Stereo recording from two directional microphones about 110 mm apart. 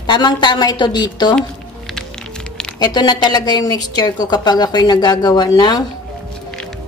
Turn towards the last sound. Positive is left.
turn(degrees=40)  # may be behind; listen again after turning